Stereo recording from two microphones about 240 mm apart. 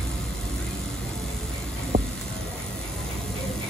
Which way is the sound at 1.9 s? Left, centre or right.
Right.